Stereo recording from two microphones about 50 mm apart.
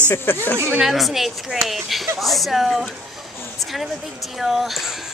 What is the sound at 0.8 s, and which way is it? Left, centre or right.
Speech, centre.